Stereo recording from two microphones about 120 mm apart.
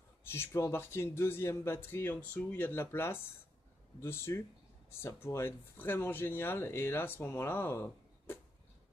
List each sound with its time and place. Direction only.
0.3 s speech: 20° left (ahead or behind)